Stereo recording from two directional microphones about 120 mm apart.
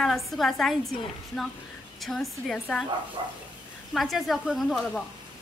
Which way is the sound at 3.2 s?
45° right (ahead or behind).